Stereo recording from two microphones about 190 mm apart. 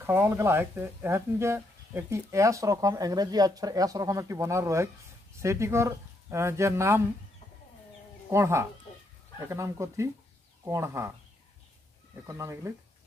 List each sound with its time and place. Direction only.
0.0 s speech: 10° right (ahead or behind)
8.3 s speech: 15° right (ahead or behind)
12.3 s speech: 15° right (ahead or behind)